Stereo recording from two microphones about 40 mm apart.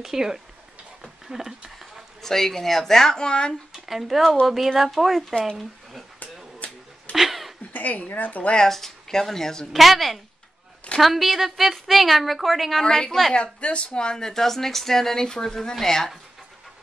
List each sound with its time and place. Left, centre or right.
0.0 s speech: centre
2.2 s a woman's voice: centre
3.7 s a sound: centre
4.7 s a woman's voice: centre
6.1 s a sound: left
7.2 s a sound: centre
7.7 s speech: left
8.6 s a woman's voice: centre
9.7 s a woman's voice: centre
12.8 s a woman's voice: centre
13.3 s a woman's voice: left; by 16.1 s centre